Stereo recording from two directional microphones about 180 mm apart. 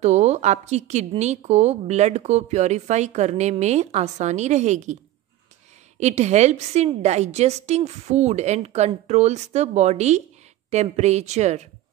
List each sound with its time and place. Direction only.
0.0 s a woman's voice: 40° right (ahead or behind)
5.9 s a woman's voice: 40° right (ahead or behind)